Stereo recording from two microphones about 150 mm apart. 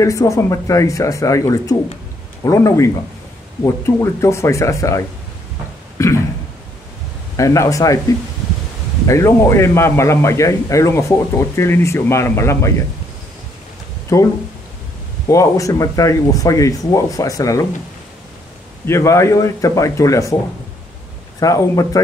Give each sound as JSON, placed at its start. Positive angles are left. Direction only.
{"t": 0.0, "sound": "a man's voice", "side_deg": 20}
{"t": 5.9, "sound": "a sound", "side_deg": 20}
{"t": 7.3, "sound": "a man's voice", "side_deg": 20}
{"t": 9.0, "sound": "a man's voice", "side_deg": 20}
{"t": 14.1, "sound": "a man's voice", "side_deg": 20}
{"t": 18.9, "sound": "a man's voice", "side_deg": 20}
{"t": 21.4, "sound": "a man's voice", "side_deg": 20}